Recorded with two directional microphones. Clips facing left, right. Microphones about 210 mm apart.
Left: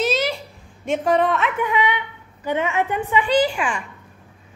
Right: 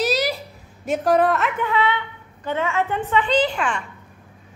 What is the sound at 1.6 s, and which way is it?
A woman's voice, 15° left (ahead or behind).